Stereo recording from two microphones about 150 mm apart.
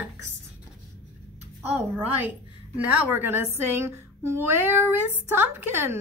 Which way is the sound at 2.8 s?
10° right (ahead or behind).